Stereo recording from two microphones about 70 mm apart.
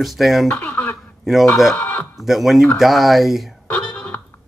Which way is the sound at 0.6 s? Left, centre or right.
Left.